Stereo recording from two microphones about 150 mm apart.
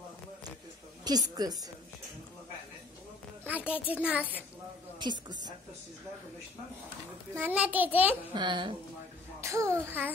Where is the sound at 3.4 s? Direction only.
10° right (ahead or behind).